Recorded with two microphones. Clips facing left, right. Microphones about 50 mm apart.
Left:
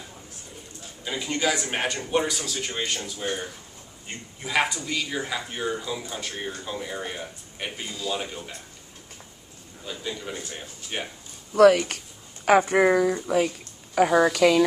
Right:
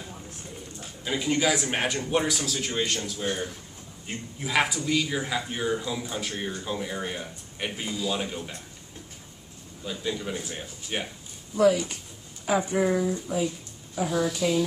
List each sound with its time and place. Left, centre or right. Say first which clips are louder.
1.0 s speech: right 1 dB; centre
9.8 s speech: right 2 dB; centre
11.5 s speech: left 5 dB; left
13.9 s speech: left 7 dB; left